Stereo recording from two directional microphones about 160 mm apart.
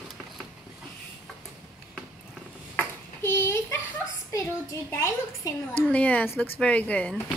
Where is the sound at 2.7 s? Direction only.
15° left (ahead or behind).